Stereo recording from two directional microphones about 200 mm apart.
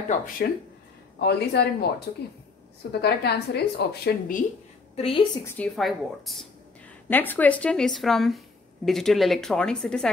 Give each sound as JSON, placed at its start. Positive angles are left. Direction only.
{"t": 0.4, "sound": "a woman's voice", "side_deg": 55}
{"t": 4.9, "sound": "a woman's voice", "side_deg": 25}
{"t": 5.4, "sound": "speech", "side_deg": 5}